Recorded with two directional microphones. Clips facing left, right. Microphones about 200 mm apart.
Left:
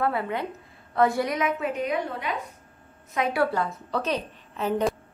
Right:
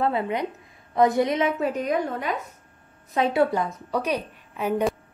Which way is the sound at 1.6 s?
40° right (ahead or behind).